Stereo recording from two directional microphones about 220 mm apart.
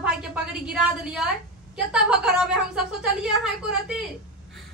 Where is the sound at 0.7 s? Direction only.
Centre (ahead or behind).